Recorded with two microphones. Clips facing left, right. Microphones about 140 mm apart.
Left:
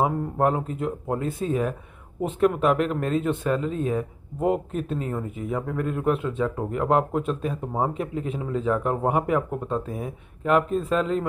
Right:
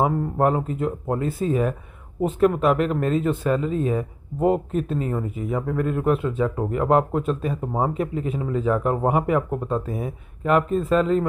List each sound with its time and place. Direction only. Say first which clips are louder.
0.0 s speech: right 2 dB; centre (ahead or behind)